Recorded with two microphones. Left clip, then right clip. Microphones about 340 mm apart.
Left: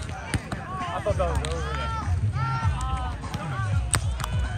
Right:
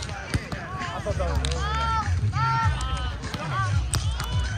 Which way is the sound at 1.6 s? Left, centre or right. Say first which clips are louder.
Right 5 dB; right.